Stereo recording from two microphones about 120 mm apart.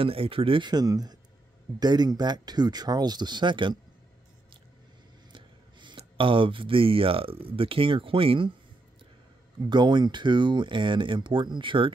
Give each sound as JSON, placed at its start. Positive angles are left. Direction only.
{"t": 0.0, "sound": "speech", "side_deg": -50}
{"t": 5.3, "sound": "speech", "side_deg": -40}
{"t": 9.7, "sound": "speech", "side_deg": -40}